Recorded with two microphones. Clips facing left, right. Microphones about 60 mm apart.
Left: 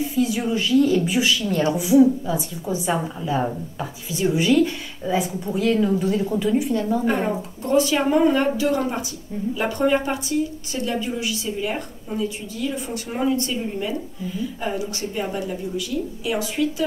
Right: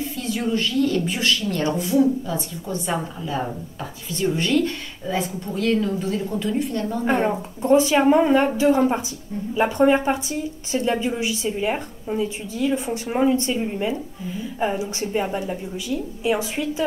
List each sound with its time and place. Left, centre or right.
0.1 s a woman's voice: centre
7.6 s a woman's voice: right